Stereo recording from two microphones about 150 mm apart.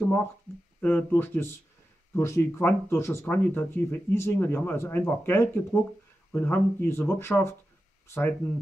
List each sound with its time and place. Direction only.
0.7 s speech: 10° left (ahead or behind)